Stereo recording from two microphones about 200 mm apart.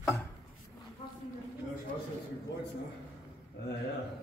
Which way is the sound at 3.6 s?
50° left (ahead or behind).